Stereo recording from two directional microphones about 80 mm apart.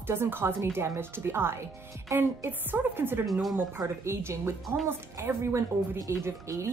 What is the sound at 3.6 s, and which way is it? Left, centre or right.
A woman's voice, right.